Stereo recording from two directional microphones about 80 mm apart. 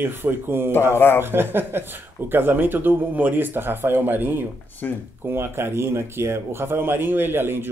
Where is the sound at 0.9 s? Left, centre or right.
Left.